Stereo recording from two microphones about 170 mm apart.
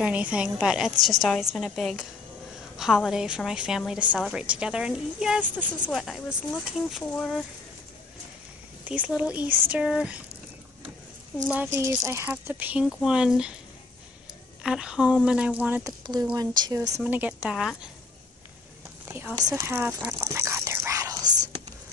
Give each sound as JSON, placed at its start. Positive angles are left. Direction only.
{"t": 0.0, "sound": "a woman's voice", "side_deg": -5}
{"t": 8.8, "sound": "speech", "side_deg": -10}
{"t": 11.4, "sound": "speech", "side_deg": -10}
{"t": 14.6, "sound": "speech", "side_deg": -5}
{"t": 16.3, "sound": "speech", "side_deg": -25}
{"t": 17.0, "sound": "speech", "side_deg": -10}
{"t": 19.0, "sound": "speech", "side_deg": -15}
{"t": 20.1, "sound": "whispering", "side_deg": -15}